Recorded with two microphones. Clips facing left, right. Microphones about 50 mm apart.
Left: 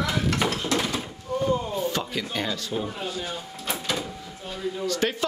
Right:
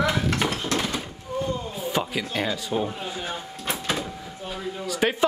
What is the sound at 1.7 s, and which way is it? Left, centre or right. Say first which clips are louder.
Speech: even; centre.